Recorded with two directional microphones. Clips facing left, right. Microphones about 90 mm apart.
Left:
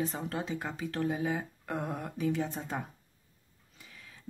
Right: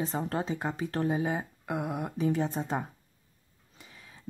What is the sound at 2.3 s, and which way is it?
Speech, 30° right (ahead or behind).